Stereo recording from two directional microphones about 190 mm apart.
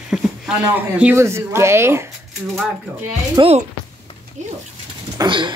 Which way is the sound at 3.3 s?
30° right (ahead or behind).